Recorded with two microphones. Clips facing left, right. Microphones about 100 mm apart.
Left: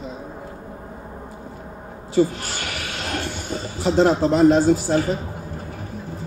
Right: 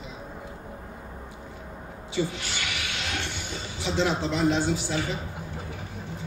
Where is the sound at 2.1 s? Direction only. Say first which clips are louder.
Left 10 dB; 40° left (ahead or behind).